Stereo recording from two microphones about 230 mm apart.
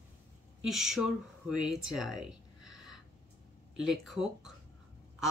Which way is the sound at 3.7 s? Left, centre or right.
Centre.